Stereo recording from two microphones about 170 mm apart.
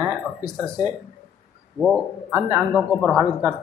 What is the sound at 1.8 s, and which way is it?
Speech, 5° right (ahead or behind).